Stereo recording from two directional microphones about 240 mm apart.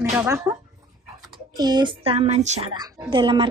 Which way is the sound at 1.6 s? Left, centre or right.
Centre.